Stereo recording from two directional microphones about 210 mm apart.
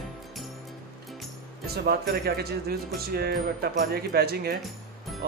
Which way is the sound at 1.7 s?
50° right (ahead or behind).